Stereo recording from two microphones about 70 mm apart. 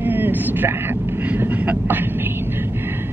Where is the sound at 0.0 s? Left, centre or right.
Right.